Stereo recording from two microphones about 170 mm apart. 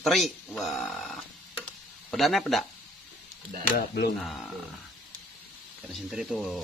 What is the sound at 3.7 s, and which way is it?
Speech, 70° left (ahead or behind).